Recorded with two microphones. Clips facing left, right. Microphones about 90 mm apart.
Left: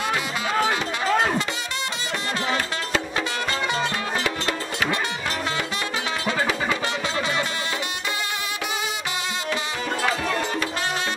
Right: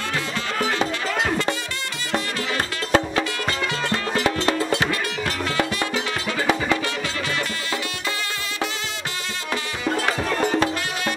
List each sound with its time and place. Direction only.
2.1 s music: 50° right (ahead or behind)
4.2 s music: 30° right (ahead or behind)